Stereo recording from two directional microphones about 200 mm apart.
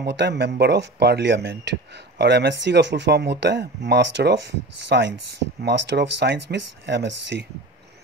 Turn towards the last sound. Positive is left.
turn(degrees=-60)  # may be behind; listen again after turning